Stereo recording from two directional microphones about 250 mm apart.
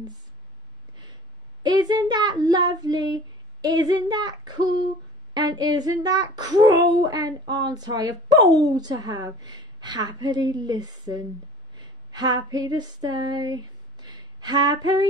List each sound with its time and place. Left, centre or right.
1.6 s a child's voice: centre
11.7 s female singing: centre